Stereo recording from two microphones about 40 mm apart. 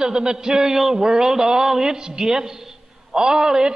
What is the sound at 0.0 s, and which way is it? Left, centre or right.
A man's voice, centre.